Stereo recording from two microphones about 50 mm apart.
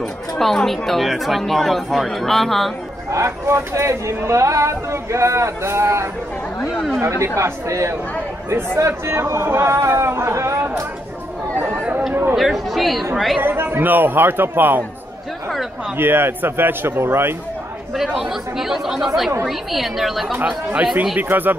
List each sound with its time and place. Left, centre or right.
0.0 s speech: centre
3.1 s speech: right
7.0 s speech: right
8.5 s speech: right
12.1 s a man's voice: right
12.4 s speech: centre
13.4 s a man's voice: right
16.0 s a man's voice: right
17.9 s speech: centre
21.2 s speech: right